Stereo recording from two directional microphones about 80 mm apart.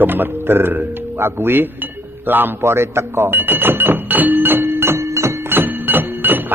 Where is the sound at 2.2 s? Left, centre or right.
Right.